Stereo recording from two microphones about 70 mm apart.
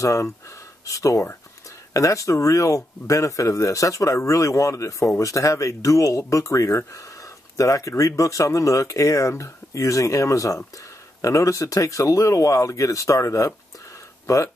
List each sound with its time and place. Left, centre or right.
0.0 s speech: left